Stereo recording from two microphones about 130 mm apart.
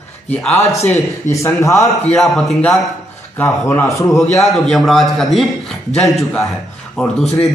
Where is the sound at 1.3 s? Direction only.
25° left (ahead or behind).